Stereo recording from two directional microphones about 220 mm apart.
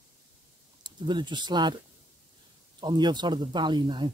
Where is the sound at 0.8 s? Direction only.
20° right (ahead or behind).